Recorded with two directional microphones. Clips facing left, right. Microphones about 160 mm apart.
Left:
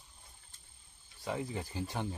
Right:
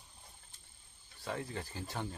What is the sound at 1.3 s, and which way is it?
Speech, 15° left (ahead or behind).